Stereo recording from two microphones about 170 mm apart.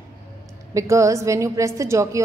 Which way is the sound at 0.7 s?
15° right (ahead or behind).